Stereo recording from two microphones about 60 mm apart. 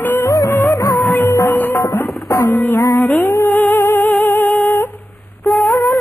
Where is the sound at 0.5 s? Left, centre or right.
Left.